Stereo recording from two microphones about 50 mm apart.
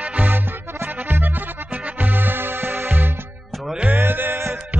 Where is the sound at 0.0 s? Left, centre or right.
Right.